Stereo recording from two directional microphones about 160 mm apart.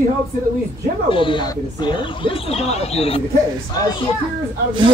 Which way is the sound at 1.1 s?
30° left (ahead or behind).